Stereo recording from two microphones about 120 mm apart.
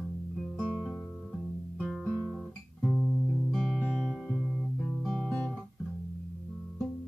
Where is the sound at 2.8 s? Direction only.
5° right (ahead or behind).